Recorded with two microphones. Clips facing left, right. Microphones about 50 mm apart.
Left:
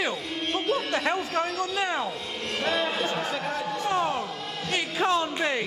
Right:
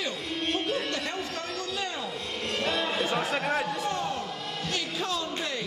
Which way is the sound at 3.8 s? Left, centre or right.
Left.